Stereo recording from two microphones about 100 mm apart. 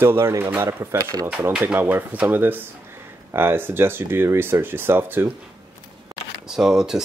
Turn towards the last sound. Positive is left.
turn(degrees=-5)  # may be behind; listen again after turning